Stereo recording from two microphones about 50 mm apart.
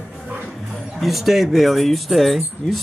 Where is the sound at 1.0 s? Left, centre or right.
Centre.